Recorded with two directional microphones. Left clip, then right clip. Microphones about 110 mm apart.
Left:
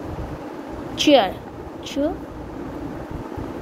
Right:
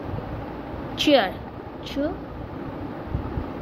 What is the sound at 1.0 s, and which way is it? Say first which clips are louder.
Speech: left 4 dB; 20° left (ahead or behind).